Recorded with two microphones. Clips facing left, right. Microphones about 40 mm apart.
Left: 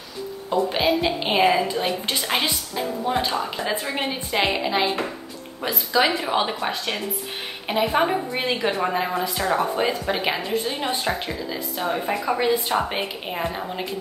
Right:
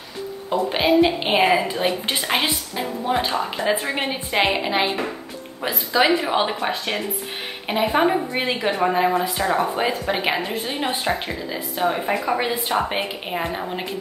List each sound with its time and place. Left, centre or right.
0.5 s a woman's voice: centre
7.6 s a woman's voice: centre